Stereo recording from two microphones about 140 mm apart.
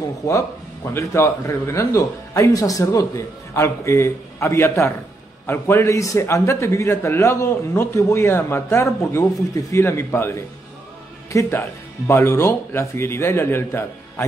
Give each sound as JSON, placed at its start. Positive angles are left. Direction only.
{"t": 0.2, "sound": "a man's voice", "side_deg": 25}